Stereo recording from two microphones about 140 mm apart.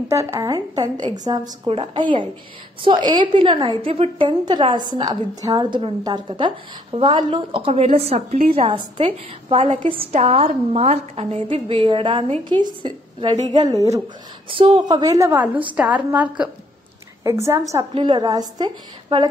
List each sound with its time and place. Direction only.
0.1 s a woman's voice: 20° right (ahead or behind)
13.6 s a woman's voice: 25° right (ahead or behind)
14.5 s a woman's voice: 35° right (ahead or behind); by 16.4 s 10° right (ahead or behind)
17.2 s a woman's voice: 20° right (ahead or behind)
17.9 s a woman's voice: 30° right (ahead or behind)